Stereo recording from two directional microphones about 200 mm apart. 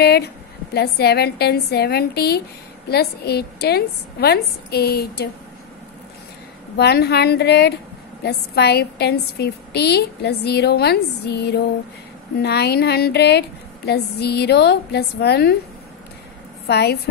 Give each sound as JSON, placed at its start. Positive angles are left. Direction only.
{"t": 0.0, "sound": "a woman's voice", "side_deg": 55}
{"t": 6.8, "sound": "a woman's voice", "side_deg": 55}
{"t": 16.6, "sound": "a woman's voice", "side_deg": 55}